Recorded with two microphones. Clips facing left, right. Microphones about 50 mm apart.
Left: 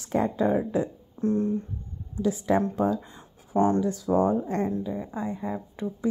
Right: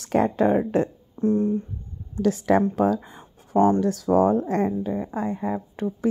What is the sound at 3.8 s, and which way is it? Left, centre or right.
Speech, right.